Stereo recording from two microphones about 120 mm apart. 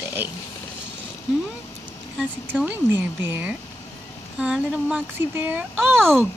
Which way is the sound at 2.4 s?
15° right (ahead or behind).